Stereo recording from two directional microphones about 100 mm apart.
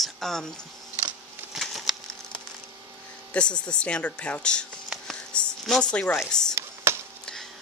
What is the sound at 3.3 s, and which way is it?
Speech, 10° left (ahead or behind).